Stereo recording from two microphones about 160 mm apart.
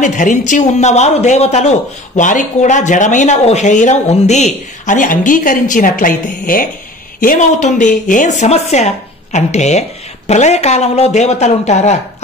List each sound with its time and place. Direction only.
0.0 s a woman's voice: 50° left (ahead or behind)